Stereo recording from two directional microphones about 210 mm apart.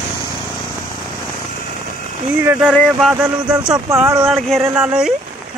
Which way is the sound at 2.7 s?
Centre (ahead or behind).